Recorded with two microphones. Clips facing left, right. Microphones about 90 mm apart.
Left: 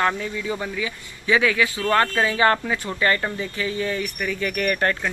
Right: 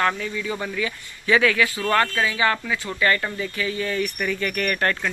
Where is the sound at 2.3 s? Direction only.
40° left (ahead or behind).